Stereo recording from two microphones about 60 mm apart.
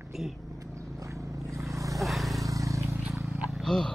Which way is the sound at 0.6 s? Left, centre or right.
Right.